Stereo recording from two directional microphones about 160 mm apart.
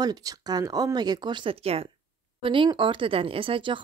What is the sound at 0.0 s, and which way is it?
Speech, 25° right (ahead or behind).